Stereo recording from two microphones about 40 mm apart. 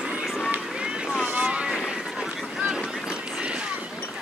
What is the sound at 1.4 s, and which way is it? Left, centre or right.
Boat, right.